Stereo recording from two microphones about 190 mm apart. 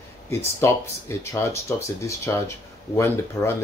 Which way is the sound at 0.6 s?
15° left (ahead or behind).